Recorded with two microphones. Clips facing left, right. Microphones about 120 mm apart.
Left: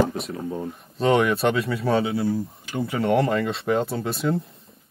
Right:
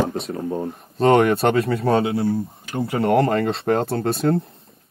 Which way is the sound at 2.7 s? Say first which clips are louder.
Right 3 dB; 40° right (ahead or behind).